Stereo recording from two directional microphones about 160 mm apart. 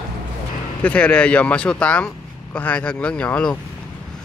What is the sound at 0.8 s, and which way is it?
Speech, 10° left (ahead or behind).